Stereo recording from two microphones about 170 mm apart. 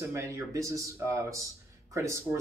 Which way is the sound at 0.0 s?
15° right (ahead or behind).